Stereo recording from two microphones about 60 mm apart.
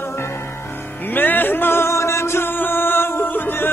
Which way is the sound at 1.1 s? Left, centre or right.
Left.